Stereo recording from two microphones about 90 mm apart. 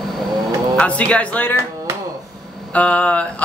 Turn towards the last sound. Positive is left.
turn(degrees=15)  # may be behind; listen again after turning